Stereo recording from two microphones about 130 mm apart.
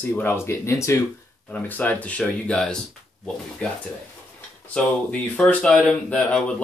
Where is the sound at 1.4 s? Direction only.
10° left (ahead or behind).